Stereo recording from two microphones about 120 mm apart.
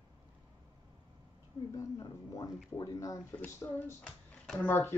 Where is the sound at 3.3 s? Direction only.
20° left (ahead or behind).